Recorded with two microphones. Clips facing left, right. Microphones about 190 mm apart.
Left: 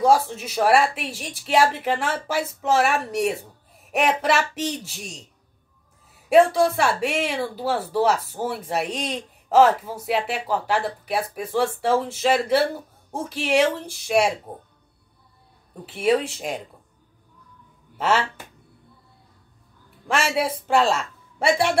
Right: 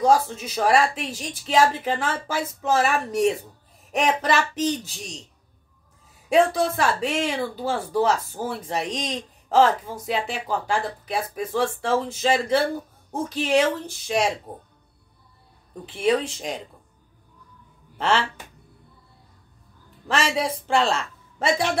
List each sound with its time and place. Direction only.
0.0 s speech: 5° left (ahead or behind)
6.2 s speech: 10° left (ahead or behind)
15.8 s speech: 5° left (ahead or behind)
17.9 s speech: 5° left (ahead or behind)
20.1 s a woman's voice: 10° left (ahead or behind)